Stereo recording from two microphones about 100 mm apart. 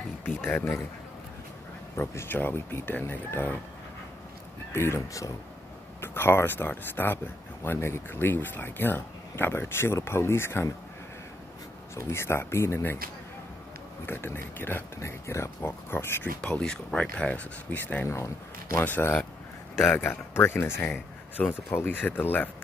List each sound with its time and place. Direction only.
0.2 s speech: 20° left (ahead or behind)
2.0 s speech: 20° left (ahead or behind)
4.7 s speech: 30° left (ahead or behind)
11.9 s speech: 25° left (ahead or behind)
14.0 s speech: 25° left (ahead or behind)
16.3 s speech: 10° left (ahead or behind); by 18.9 s 30° left (ahead or behind)
18.9 s speech: 15° left (ahead or behind)
19.7 s speech: 5° left (ahead or behind)
20.0 s speech: 20° left (ahead or behind)